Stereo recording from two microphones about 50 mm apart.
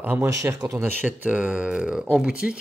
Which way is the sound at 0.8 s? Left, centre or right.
Right.